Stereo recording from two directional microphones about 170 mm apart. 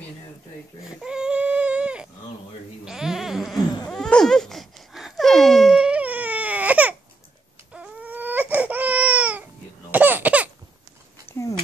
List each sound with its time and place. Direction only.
0.8 s baby cry: 5° right (ahead or behind)
2.8 s bleat: 5° right (ahead or behind)
3.9 s wail: 5° left (ahead or behind)
7.7 s baby cry: 5° right (ahead or behind)
11.2 s a sound: 15° left (ahead or behind)